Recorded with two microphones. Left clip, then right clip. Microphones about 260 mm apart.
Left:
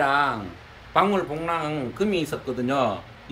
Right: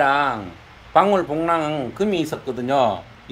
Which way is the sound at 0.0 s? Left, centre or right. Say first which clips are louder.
Right 3 dB; centre.